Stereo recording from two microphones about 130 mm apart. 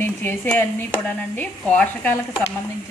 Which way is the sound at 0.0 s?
15° left (ahead or behind).